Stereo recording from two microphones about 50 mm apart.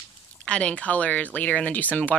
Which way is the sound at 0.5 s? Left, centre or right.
Left.